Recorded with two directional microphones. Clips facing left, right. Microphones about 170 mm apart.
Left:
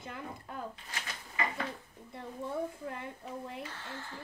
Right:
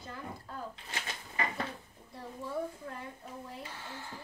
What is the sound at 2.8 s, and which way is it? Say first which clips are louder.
Speech: left 3 dB; 20° left (ahead or behind).